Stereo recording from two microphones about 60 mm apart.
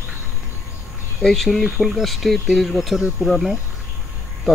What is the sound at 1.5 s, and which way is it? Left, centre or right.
Speech, centre.